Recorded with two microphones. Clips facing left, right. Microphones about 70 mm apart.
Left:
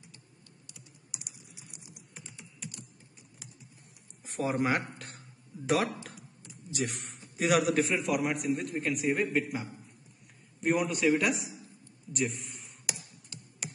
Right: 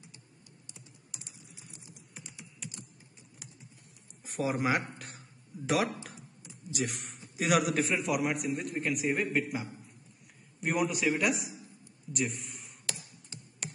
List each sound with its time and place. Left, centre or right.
1.1 s typing: centre
2.1 s typing: centre
4.2 s speech: centre
4.9 s a sound: centre
6.7 s a man's voice: centre
12.1 s a sound: centre
12.9 s tick-tock: right